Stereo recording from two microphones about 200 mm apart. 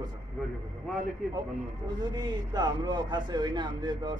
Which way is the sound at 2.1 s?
20° right (ahead or behind).